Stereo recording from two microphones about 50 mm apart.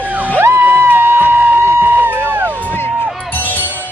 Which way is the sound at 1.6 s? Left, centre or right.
Right.